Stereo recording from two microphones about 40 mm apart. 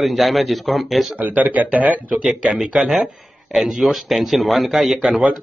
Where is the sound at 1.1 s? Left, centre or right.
Right.